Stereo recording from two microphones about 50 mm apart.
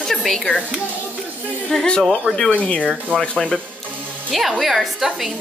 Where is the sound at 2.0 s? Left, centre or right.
Centre.